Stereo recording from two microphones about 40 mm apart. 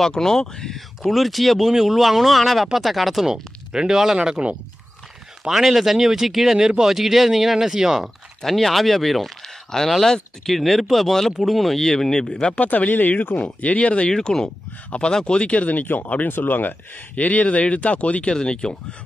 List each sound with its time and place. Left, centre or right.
0.0 s speech: centre
0.7 s speech: centre
3.7 s speech: centre
8.4 s speech: centre
12.6 s speech: left
13.4 s speech: left
14.1 s speech: centre
14.9 s speech: left
15.5 s speech: left
17.1 s speech: left
18.3 s speech: left